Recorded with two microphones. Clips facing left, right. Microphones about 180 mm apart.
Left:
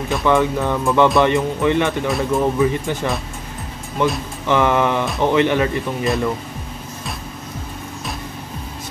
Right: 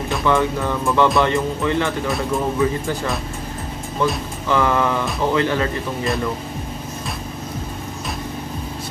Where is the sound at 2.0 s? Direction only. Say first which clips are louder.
Left 3 dB; centre (ahead or behind).